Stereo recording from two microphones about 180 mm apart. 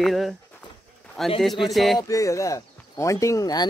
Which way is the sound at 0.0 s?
Centre (ahead or behind).